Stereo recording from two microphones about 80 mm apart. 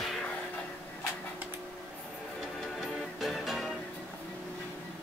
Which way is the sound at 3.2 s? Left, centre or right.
Centre.